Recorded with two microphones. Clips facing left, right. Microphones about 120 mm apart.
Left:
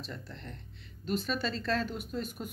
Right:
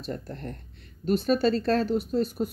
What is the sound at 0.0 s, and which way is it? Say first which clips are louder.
Speech: right 9 dB; 45° right (ahead or behind).